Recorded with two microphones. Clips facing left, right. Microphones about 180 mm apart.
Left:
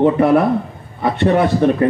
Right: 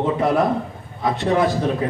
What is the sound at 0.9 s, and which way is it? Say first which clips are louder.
Speech: left 4 dB; 60° left (ahead or behind).